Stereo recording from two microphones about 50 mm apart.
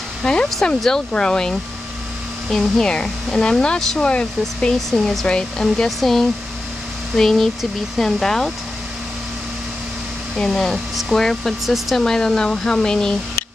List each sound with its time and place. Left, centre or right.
0.2 s speech: centre
5.9 s speech: centre
10.3 s speech: centre
11.6 s speech: centre
12.0 s speech: centre